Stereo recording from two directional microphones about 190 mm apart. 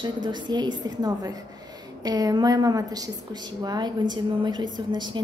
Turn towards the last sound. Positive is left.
turn(degrees=-25)  # may be behind; listen again after turning